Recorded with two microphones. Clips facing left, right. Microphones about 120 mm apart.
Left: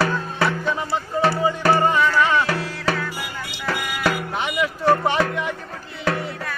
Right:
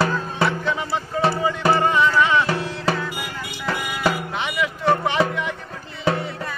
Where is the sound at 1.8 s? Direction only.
Centre (ahead or behind).